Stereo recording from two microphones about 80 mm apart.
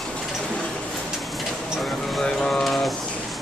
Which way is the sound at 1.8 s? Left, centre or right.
Centre.